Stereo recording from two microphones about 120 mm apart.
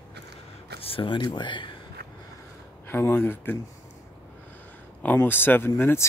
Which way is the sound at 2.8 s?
15° left (ahead or behind).